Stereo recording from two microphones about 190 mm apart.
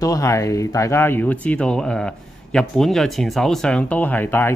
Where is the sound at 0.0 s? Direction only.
15° left (ahead or behind).